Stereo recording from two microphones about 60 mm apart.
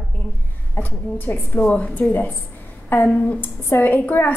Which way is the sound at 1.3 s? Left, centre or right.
Left.